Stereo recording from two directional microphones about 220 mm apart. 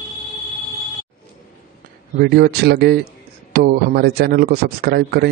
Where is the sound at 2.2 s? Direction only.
45° right (ahead or behind).